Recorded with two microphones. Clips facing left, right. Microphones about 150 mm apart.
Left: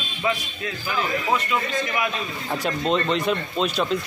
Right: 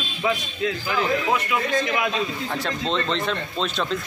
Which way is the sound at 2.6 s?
10° left (ahead or behind).